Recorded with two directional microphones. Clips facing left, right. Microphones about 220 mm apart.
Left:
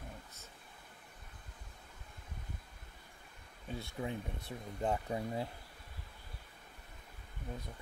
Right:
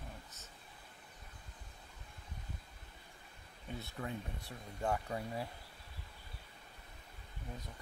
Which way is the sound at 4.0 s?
20° left (ahead or behind).